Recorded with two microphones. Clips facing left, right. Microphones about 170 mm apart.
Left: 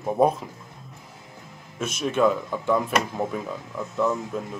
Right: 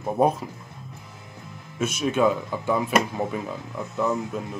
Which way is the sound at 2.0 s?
5° right (ahead or behind).